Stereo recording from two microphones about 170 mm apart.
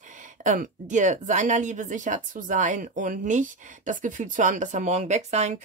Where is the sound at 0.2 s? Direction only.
50° right (ahead or behind).